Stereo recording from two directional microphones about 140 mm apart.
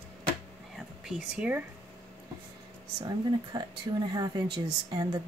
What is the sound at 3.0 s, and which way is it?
Speech, 30° right (ahead or behind).